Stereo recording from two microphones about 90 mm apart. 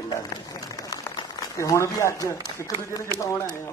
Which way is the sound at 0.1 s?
45° left (ahead or behind).